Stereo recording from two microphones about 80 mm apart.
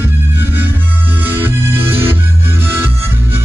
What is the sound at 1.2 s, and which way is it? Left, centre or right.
Music, right.